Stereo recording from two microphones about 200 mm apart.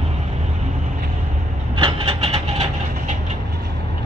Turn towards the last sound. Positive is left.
turn(degrees=-30)  # may be behind; listen again after turning